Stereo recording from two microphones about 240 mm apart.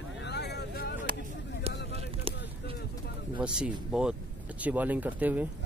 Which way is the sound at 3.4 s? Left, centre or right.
Centre.